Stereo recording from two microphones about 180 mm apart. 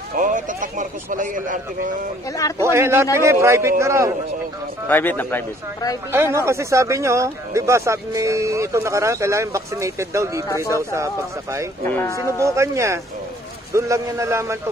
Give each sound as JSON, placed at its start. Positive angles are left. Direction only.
{"t": 0.1, "sound": "speech", "side_deg": -45}
{"t": 2.6, "sound": "speech", "side_deg": -15}
{"t": 4.8, "sound": "speech", "side_deg": 10}
{"t": 6.1, "sound": "speech", "side_deg": -15}
{"t": 11.9, "sound": "speech", "side_deg": 15}
{"t": 12.3, "sound": "speech", "side_deg": -15}